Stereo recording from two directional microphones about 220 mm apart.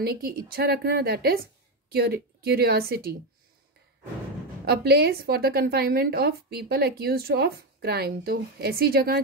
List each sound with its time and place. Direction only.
0.0 s a woman's voice: 45° right (ahead or behind)
4.6 s a woman's voice: 45° right (ahead or behind)